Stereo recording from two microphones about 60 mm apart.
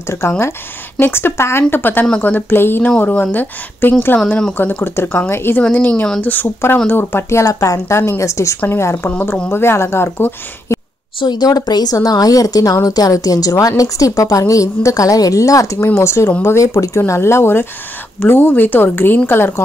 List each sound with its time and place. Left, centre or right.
0.0 s a woman's voice: left
4.8 s speech: left
5.7 s a woman's voice: left
7.4 s speech: left
11.4 s a woman's voice: left
15.8 s speech: left